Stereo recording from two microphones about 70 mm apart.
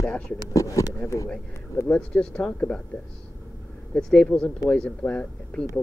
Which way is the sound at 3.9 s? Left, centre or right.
Centre.